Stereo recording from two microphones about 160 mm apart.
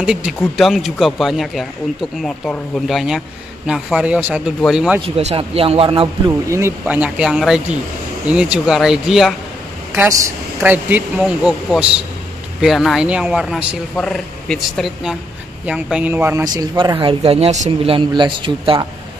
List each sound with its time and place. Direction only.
0.0 s speech: 5° right (ahead or behind)
5.0 s speech: 35° right (ahead or behind)
6.5 s speech: 15° right (ahead or behind)
9.9 s speech: 15° right (ahead or behind)
16.4 s speech: 25° right (ahead or behind)